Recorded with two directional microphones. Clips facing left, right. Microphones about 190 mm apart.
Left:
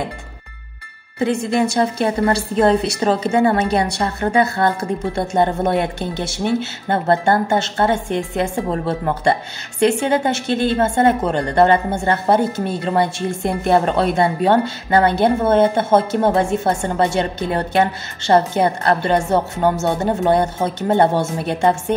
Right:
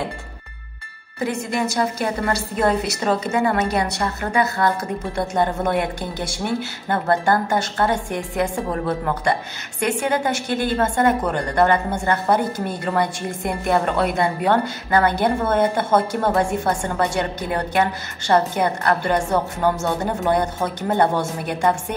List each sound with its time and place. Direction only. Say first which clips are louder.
1.2 s a woman's voice: left 5 dB; 30° left (ahead or behind)